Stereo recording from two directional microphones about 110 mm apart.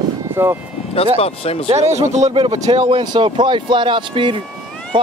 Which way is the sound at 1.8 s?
90° right.